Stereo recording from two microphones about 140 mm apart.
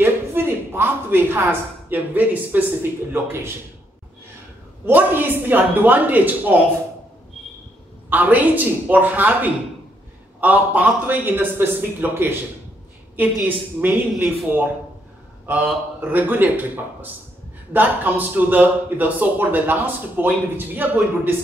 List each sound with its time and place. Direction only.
0.0 s a woman's voice: 15° right (ahead or behind)
4.8 s speech: 15° right (ahead or behind)
8.1 s a man's voice: 10° right (ahead or behind)